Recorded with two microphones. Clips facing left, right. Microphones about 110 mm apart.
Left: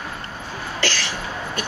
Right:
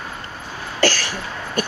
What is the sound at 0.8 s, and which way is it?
Cough, 45° right (ahead or behind).